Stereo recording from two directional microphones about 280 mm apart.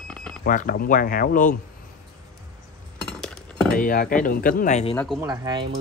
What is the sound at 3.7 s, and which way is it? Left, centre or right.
Speech, left.